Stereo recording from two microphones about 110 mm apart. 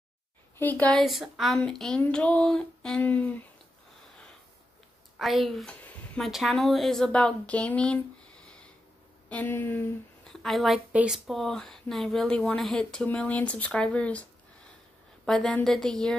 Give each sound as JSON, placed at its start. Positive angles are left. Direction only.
{"t": 0.6, "sound": "speech", "side_deg": 15}
{"t": 0.9, "sound": "speech", "side_deg": 0}
{"t": 5.2, "sound": "a woman's voice", "side_deg": 0}
{"t": 10.2, "sound": "a woman's voice", "side_deg": 5}
{"t": 15.2, "sound": "speech", "side_deg": 5}